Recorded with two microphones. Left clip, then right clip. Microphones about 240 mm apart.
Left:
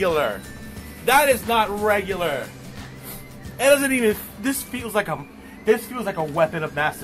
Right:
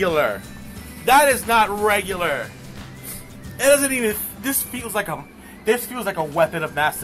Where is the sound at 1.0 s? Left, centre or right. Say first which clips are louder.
Right 2 dB; centre.